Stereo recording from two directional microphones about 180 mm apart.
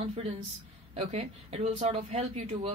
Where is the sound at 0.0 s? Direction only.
35° right (ahead or behind).